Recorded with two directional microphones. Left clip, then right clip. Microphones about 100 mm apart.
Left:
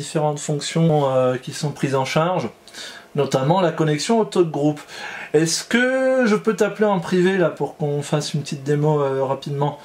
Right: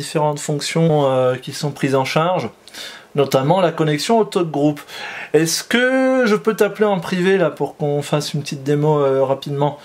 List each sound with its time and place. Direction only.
0.1 s speech: 35° right (ahead or behind)